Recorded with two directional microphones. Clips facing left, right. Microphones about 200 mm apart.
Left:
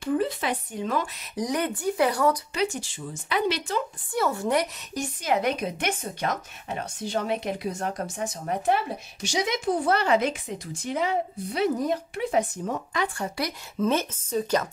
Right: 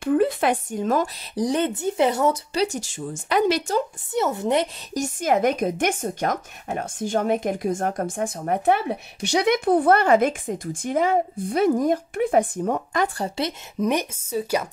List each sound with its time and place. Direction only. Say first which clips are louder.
0.0 s speech: right 6 dB; 55° right (ahead or behind); by 2.3 s 25° right (ahead or behind)
2.5 s speech: right 4 dB; 40° right (ahead or behind)
4.1 s speech: right 3 dB; 20° right (ahead or behind)
4.9 s speech: right 5 dB; 45° right (ahead or behind)
13.2 s a woman's voice: right 4 dB; 25° right (ahead or behind)